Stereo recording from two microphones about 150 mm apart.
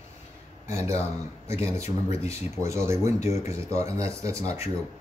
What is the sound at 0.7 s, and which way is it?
Speech, 20° right (ahead or behind).